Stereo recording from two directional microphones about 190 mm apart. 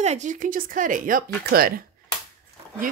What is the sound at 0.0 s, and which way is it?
Speech, 40° right (ahead or behind).